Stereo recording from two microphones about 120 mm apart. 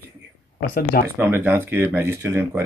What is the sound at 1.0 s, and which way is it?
Speech, 15° right (ahead or behind).